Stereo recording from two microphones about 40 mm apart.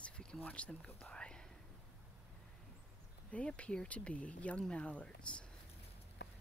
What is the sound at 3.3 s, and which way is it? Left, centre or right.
Speech, left.